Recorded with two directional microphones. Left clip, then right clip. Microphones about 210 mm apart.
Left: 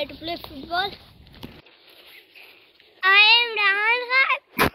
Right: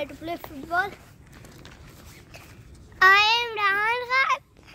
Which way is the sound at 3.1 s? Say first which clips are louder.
Left 4 dB; 35° right (ahead or behind).